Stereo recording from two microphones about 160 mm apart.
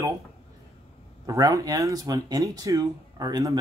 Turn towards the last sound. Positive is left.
turn(degrees=-25)  # may be behind; listen again after turning